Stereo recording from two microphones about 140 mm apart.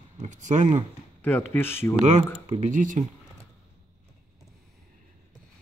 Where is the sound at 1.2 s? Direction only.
15° left (ahead or behind).